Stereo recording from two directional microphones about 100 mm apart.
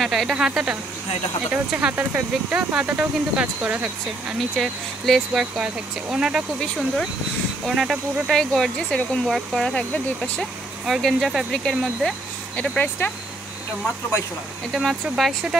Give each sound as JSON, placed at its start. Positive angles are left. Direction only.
{"t": 0.0, "sound": "speech", "side_deg": 0}
{"t": 4.6, "sound": "speech", "side_deg": 0}
{"t": 7.6, "sound": "speech", "side_deg": -5}
{"t": 10.9, "sound": "speech", "side_deg": 0}
{"t": 12.7, "sound": "speech", "side_deg": 15}
{"t": 14.7, "sound": "speech", "side_deg": -5}